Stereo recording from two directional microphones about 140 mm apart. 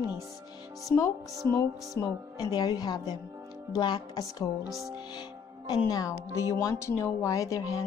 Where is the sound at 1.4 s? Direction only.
20° left (ahead or behind).